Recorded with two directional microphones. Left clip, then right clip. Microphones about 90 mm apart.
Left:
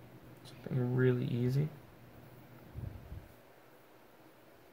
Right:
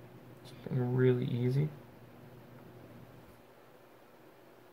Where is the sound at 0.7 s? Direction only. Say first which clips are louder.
Right 2 dB; 30° left (ahead or behind).